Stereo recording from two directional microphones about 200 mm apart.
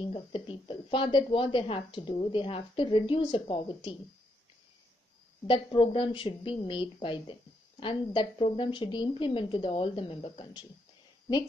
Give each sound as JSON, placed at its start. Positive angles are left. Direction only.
{"t": 0.0, "sound": "a woman's voice", "side_deg": 25}
{"t": 5.5, "sound": "a woman's voice", "side_deg": 25}